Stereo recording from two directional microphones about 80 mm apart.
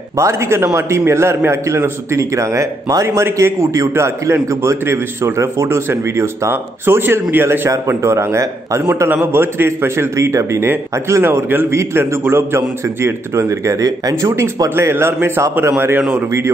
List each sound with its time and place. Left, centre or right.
0.2 s a man's voice: right
9.1 s a man's voice: right
14.2 s a man's voice: right